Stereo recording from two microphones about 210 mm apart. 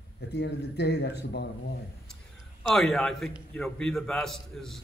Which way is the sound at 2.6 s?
Centre (ahead or behind).